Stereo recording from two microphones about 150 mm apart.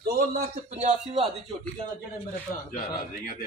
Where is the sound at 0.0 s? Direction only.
90° right.